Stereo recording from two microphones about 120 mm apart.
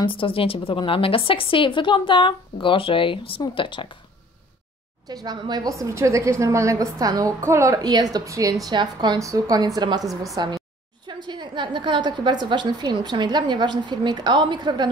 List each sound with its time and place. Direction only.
0.0 s a woman's voice: 45° left (ahead or behind)
5.0 s a woman's voice: 35° right (ahead or behind)